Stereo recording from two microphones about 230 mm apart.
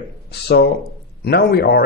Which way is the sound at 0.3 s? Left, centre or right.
Left.